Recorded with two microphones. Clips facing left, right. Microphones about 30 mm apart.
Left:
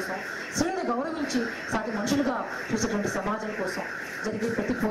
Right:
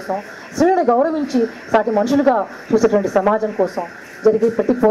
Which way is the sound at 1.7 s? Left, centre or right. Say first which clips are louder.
Right 15 dB; right.